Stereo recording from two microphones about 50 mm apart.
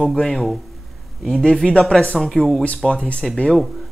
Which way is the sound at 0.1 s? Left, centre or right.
Centre.